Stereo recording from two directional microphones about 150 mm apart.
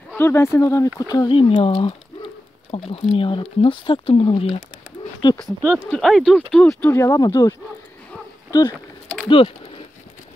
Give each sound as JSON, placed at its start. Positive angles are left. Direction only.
{"t": 0.1, "sound": "speech", "side_deg": 15}
{"t": 1.4, "sound": "speech", "side_deg": 40}
{"t": 5.6, "sound": "speech", "side_deg": 5}